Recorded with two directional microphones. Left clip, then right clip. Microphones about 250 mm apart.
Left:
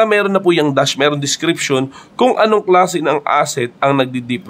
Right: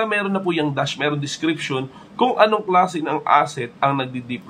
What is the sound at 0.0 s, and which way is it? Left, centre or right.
Speech, left.